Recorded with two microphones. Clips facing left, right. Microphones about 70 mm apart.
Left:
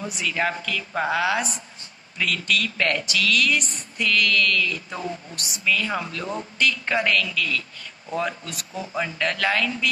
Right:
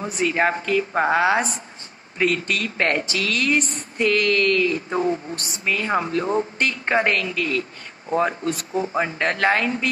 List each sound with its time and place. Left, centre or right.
0.0 s a woman's voice: right